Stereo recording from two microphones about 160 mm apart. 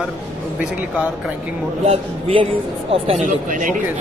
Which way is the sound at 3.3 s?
55° right (ahead or behind).